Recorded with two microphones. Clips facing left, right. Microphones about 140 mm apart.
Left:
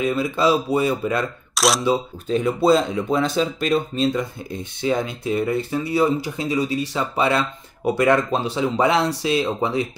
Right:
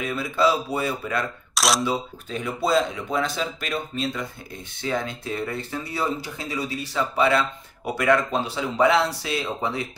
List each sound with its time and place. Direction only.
0.0 s speech: 20° left (ahead or behind)
1.5 s speech: centre (ahead or behind)
1.9 s speech: 30° left (ahead or behind)
4.8 s speech: 15° left (ahead or behind)